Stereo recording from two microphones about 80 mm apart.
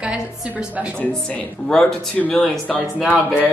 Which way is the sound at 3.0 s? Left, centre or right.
Left.